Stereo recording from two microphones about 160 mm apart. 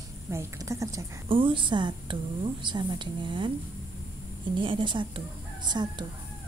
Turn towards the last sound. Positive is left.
turn(degrees=-25)  # may be behind; listen again after turning